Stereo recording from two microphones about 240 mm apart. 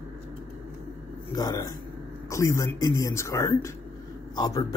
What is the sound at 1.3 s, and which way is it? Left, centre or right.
Speech, centre.